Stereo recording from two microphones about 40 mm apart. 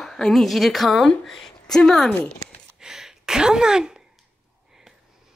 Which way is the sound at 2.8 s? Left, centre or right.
Centre.